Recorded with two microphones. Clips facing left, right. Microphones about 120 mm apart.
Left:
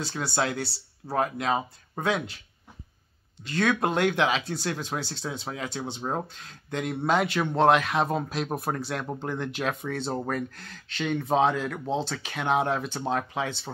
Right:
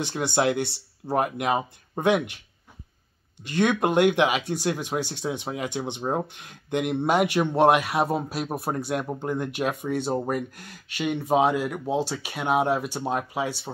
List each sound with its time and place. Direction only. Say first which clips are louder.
0.0 s speech: right 5 dB; 20° right (ahead or behind)
3.5 s speech: right 4 dB; 15° right (ahead or behind)